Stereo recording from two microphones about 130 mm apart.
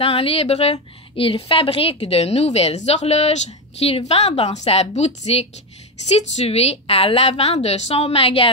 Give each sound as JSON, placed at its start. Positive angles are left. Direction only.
{"t": 0.0, "sound": "a woman's voice", "side_deg": 50}